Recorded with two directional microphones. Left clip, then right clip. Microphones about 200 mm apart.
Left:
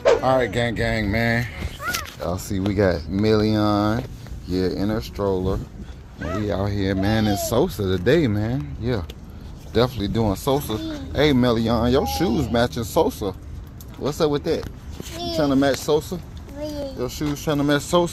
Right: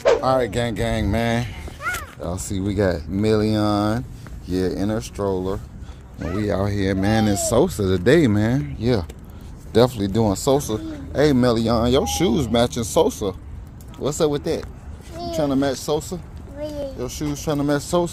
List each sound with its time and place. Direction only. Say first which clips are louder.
0.0 s speech: even; centre (ahead or behind); by 1.6 s 20° right (ahead or behind)
2.2 s speech: left 1 dB; centre (ahead or behind)
6.2 s speech: right 2 dB; 25° right (ahead or behind)
8.4 s speech: right 5 dB; 40° right (ahead or behind); by 14.6 s 15° right (ahead or behind)
15.3 s speech: left 2 dB; centre (ahead or behind)
16.6 s a sound: right 1 dB; 10° left (ahead or behind)
17.0 s speech: left 1 dB; centre (ahead or behind)